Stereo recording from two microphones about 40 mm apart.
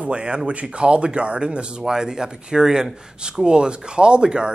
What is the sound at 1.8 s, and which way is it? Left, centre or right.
Speech, centre.